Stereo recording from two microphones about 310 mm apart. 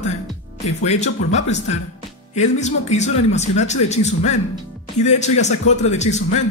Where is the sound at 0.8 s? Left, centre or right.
Left.